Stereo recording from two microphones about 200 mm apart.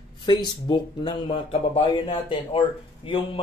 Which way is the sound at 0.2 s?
20° left (ahead or behind).